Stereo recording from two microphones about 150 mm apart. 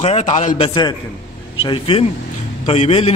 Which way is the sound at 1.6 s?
40° left (ahead or behind).